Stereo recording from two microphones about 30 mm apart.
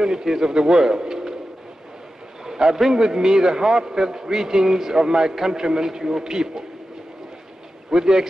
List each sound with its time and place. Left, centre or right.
0.0 s a man's voice: centre
2.4 s a man's voice: centre
7.9 s a man's voice: right